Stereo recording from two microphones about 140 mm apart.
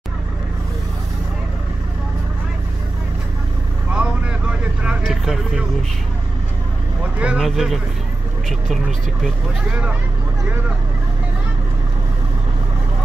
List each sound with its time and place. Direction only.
3.9 s vehicle: 5° right (ahead or behind)
7.2 s speech: 5° right (ahead or behind)
9.2 s speech: 10° right (ahead or behind)